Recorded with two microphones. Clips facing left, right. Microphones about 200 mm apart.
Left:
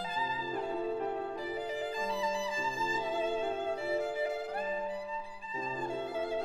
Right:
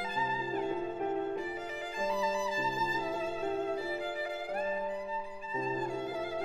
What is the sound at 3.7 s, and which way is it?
Music, 25° left (ahead or behind).